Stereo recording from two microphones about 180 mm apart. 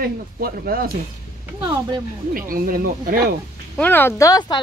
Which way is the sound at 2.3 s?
50° right (ahead or behind).